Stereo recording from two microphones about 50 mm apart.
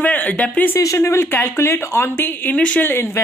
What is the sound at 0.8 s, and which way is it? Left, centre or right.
Speech, left.